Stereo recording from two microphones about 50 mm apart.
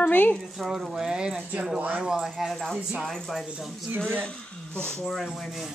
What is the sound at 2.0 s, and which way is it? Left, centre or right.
Speech, centre.